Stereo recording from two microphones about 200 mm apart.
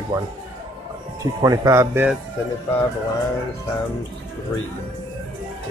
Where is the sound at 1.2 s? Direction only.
15° right (ahead or behind).